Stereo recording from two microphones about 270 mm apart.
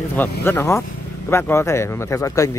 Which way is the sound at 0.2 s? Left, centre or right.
Centre.